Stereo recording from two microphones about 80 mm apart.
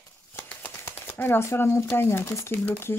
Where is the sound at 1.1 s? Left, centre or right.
Left.